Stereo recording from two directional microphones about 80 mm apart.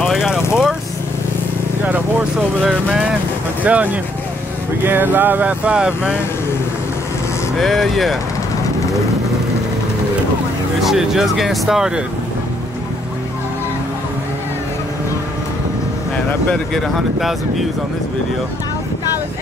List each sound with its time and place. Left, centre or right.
0.0 s vehicle: centre
2.6 s speech: centre
7.5 s speech: centre
10.8 s speech: centre
16.7 s speech: centre